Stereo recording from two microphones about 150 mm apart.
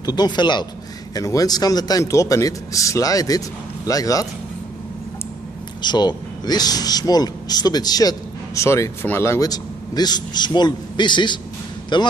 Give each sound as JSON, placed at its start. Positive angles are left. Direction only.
{"t": 0.0, "sound": "a man's voice", "side_deg": 25}
{"t": 5.8, "sound": "a man's voice", "side_deg": 30}